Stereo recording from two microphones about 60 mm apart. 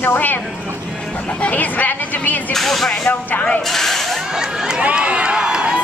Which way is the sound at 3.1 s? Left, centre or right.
Left.